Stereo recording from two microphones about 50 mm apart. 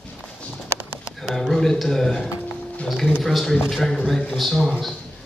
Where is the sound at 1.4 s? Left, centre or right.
Centre.